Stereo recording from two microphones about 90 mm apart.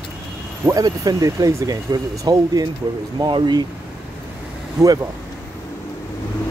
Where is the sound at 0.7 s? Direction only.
45° right (ahead or behind).